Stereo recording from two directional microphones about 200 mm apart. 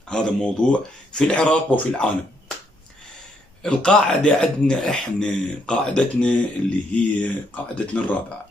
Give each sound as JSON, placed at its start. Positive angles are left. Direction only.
{"t": 0.1, "sound": "speech", "side_deg": 5}
{"t": 3.6, "sound": "speech", "side_deg": 5}